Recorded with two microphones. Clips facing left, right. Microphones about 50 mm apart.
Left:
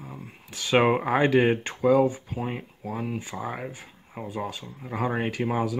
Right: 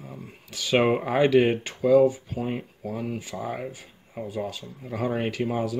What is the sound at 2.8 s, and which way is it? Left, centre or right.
Speech, left.